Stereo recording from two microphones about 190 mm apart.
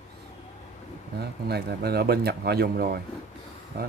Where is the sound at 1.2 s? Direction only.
55° right (ahead or behind).